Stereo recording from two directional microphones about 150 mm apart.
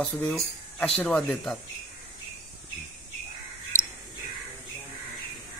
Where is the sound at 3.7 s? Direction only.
60° right (ahead or behind).